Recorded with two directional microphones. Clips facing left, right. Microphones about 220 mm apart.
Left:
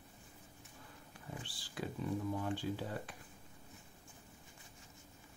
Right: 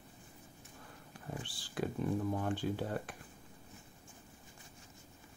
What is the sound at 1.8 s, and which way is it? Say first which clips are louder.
Speech: right 4 dB; 60° right (ahead or behind).